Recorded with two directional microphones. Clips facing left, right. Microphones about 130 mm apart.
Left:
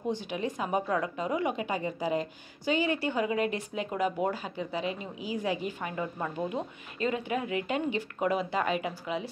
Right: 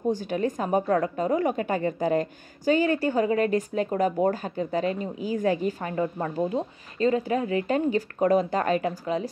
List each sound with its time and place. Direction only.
0.1 s a woman's voice: 45° right (ahead or behind)